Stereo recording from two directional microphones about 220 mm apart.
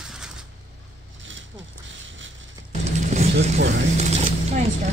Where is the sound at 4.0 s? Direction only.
30° right (ahead or behind).